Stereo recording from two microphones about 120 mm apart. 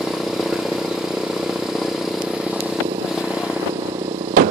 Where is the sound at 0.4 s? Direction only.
5° right (ahead or behind).